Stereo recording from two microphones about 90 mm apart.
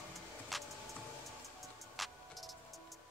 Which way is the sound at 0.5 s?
Centre (ahead or behind).